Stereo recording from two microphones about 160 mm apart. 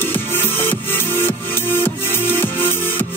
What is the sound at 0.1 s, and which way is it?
Music, 10° left (ahead or behind).